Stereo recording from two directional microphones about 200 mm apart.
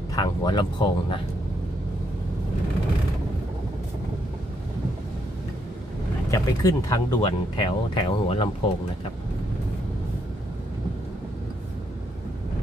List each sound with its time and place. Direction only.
0.1 s speech: 20° left (ahead or behind)
6.3 s speech: 15° left (ahead or behind)